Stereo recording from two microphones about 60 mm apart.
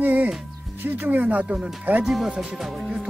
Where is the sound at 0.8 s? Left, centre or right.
Right.